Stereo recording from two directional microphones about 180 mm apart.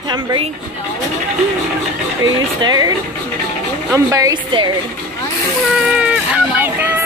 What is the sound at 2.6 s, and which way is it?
Speech, 20° right (ahead or behind).